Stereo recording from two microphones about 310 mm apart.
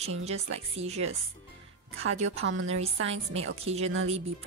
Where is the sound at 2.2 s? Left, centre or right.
Right.